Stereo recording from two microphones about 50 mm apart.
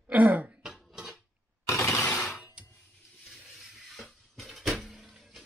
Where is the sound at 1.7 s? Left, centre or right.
Left.